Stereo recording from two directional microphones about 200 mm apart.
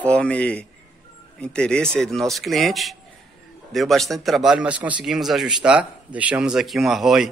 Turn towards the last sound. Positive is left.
turn(degrees=0)  # may be behind; listen again after turning